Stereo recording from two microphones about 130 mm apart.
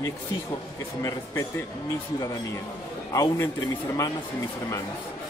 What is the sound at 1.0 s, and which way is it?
Speech, 25° left (ahead or behind).